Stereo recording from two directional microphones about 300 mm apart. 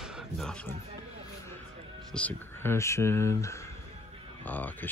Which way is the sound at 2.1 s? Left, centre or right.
Centre.